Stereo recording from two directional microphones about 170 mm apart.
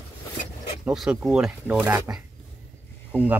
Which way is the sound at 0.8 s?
Centre (ahead or behind).